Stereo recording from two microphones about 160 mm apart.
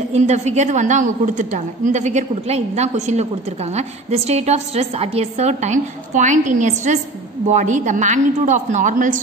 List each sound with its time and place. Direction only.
0.1 s a woman's voice: 45° right (ahead or behind)